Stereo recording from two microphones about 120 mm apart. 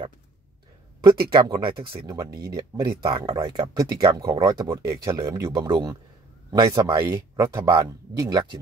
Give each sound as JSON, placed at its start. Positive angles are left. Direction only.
{"t": 1.0, "sound": "speech", "side_deg": -35}
{"t": 6.5, "sound": "speech", "side_deg": -40}
{"t": 6.8, "sound": "speech", "side_deg": -30}